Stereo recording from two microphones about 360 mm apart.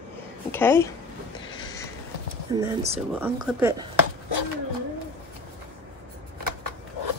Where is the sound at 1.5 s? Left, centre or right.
Centre.